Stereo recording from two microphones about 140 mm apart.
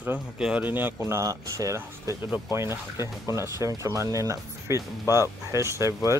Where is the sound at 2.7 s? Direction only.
25° left (ahead or behind).